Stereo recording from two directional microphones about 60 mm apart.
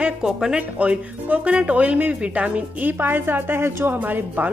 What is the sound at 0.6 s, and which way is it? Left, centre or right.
Speech, right.